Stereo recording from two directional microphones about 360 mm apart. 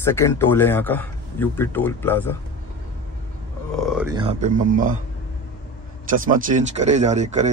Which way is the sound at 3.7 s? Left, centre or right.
Centre.